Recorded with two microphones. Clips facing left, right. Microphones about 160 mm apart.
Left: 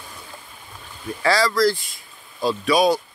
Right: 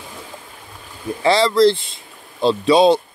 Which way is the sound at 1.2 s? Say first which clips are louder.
Right 5 dB; 25° right (ahead or behind).